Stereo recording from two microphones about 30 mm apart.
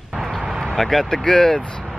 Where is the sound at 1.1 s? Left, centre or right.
Centre.